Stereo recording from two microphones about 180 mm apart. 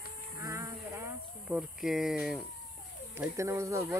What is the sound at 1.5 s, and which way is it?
Speech, centre (ahead or behind).